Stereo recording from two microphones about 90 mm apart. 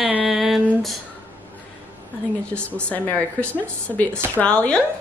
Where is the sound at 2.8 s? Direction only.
15° left (ahead or behind).